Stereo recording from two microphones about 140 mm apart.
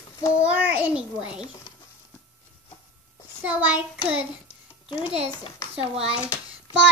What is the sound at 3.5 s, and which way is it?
Speech, 10° right (ahead or behind).